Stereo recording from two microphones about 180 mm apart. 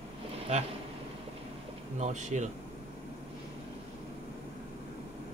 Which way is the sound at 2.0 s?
40° right (ahead or behind).